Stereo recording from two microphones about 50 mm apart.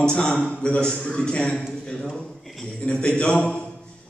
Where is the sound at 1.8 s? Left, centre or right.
Centre.